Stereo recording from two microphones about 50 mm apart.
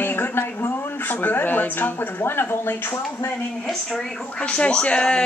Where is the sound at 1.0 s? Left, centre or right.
Left.